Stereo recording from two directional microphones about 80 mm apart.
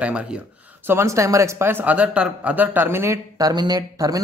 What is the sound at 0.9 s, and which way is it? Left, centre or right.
Speech, right.